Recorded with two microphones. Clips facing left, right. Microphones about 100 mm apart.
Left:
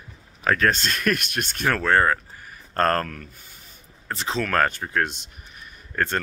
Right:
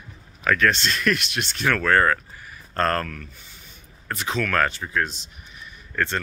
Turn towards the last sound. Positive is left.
turn(degrees=40)  # may be behind; listen again after turning